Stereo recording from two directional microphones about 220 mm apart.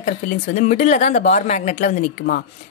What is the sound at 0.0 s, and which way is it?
Speech, 35° left (ahead or behind).